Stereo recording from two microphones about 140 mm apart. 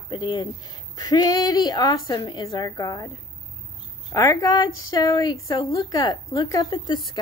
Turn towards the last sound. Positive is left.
turn(degrees=35)  # may be behind; listen again after turning